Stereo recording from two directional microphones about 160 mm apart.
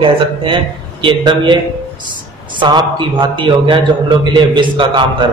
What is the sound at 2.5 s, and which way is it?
A man's voice, 25° right (ahead or behind).